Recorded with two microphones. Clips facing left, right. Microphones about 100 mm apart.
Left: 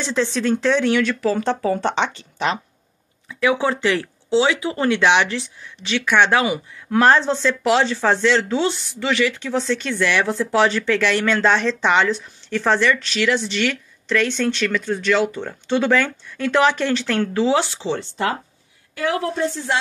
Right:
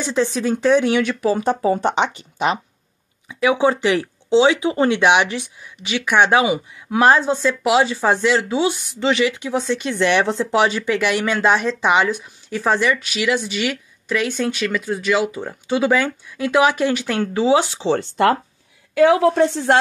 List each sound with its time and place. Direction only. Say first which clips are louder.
0.0 s speech: right 1 dB; 15° right (ahead or behind)
17.9 s speech: right 7 dB; 55° right (ahead or behind)
18.9 s a woman's voice: right 9 dB; 75° right (ahead or behind)